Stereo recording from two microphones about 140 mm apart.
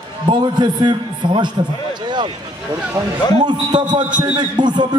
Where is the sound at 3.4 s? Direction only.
30° right (ahead or behind).